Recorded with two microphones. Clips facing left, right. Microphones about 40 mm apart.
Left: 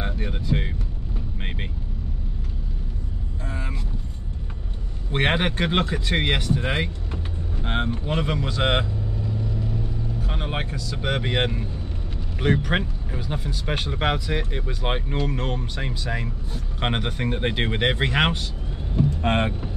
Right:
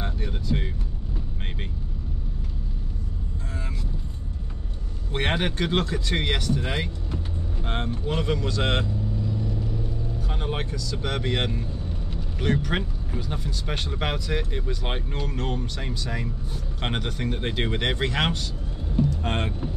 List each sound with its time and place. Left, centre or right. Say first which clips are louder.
0.0 s a sound: left 2 dB; left
5.1 s speech: left 3 dB; left
10.2 s speech: even; left